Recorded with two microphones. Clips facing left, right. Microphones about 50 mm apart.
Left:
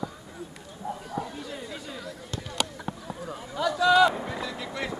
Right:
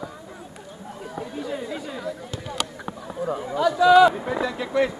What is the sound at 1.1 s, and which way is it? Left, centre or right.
Chatter, centre.